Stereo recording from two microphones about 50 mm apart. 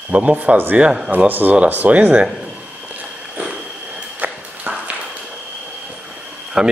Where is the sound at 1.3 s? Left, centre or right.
Right.